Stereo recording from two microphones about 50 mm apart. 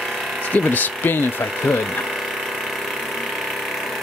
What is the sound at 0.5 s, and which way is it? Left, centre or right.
Speech, left.